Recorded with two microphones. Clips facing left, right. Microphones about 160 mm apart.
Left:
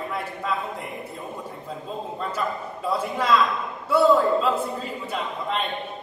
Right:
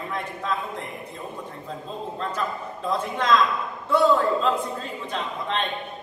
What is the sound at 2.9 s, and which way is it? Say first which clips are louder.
A man's voice: even; 10° left (ahead or behind).